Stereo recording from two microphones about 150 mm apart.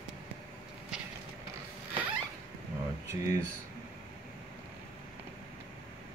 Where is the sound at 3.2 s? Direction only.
20° right (ahead or behind).